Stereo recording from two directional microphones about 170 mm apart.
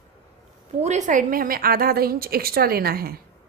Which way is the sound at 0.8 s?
45° right (ahead or behind).